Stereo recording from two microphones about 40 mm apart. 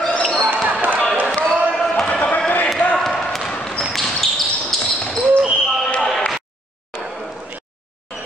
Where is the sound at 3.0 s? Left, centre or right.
Centre.